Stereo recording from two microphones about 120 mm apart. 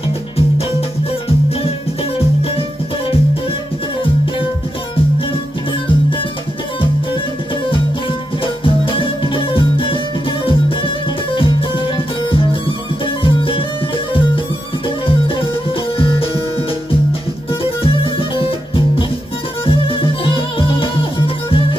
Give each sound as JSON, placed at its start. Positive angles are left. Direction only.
{"t": 8.6, "sound": "music", "side_deg": 45}
{"t": 12.3, "sound": "music", "side_deg": 45}
{"t": 17.8, "sound": "music", "side_deg": 50}
{"t": 19.6, "sound": "music", "side_deg": 50}